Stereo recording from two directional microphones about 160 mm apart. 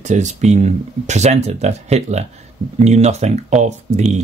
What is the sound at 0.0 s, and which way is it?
Speech, 45° right (ahead or behind).